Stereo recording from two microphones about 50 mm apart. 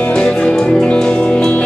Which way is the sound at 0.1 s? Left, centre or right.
Centre.